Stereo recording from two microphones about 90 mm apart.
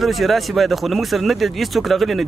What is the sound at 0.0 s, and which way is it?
Speech, centre (ahead or behind).